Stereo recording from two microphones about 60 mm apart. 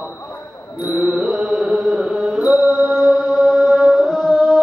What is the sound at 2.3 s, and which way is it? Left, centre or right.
Mantra, centre.